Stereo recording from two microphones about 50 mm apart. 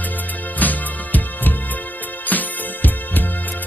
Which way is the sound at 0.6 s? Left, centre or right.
Left.